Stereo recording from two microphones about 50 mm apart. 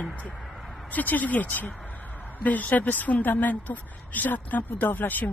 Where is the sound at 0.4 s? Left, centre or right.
Centre.